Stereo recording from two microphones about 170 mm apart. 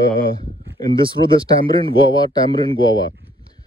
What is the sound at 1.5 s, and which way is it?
Speech, 25° left (ahead or behind).